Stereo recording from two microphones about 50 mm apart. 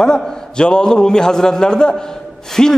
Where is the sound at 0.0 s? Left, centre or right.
Centre.